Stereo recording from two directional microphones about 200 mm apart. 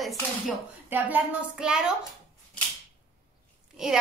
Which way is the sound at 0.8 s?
10° right (ahead or behind).